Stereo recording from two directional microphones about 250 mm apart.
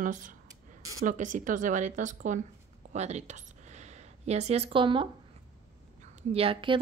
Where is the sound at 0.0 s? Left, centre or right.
Right.